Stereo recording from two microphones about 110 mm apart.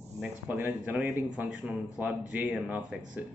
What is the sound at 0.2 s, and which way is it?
Speech, 15° right (ahead or behind).